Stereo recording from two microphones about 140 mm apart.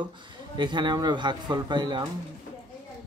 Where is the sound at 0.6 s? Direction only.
35° right (ahead or behind).